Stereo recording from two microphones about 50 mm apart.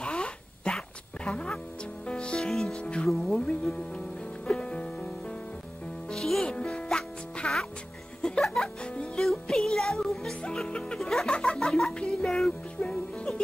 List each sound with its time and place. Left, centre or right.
0.0 s music: centre
6.0 s music: centre
9.2 s music: centre
11.2 s music: centre